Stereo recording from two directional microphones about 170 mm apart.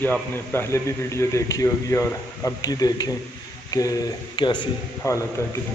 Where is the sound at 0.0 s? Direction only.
10° left (ahead or behind).